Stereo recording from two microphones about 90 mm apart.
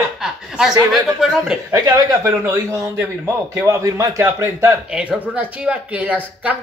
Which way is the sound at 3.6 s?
35° right (ahead or behind).